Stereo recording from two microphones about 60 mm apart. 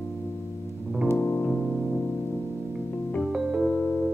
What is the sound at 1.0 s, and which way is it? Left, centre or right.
Music, left.